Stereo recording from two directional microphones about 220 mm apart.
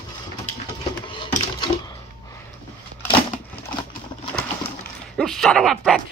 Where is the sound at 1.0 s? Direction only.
20° left (ahead or behind).